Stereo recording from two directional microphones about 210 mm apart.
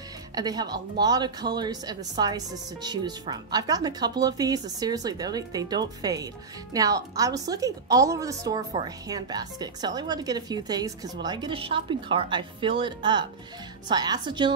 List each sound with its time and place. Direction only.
0.3 s a woman's voice: 20° right (ahead or behind)